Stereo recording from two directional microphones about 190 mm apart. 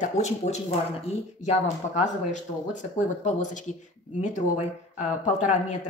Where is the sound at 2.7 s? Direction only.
40° left (ahead or behind).